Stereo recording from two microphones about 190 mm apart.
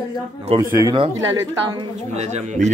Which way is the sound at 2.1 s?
35° right (ahead or behind).